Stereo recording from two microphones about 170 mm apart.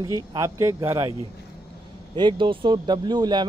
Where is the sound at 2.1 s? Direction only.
25° right (ahead or behind).